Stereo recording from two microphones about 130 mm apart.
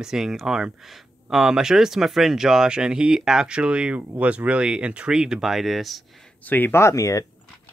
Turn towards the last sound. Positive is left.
turn(degrees=25)  # may be behind; listen again after turning